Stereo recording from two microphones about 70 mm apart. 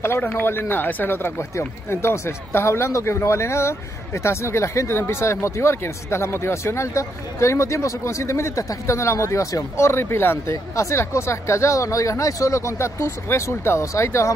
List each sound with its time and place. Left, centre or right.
0.0 s speech: left
10.5 s speech: left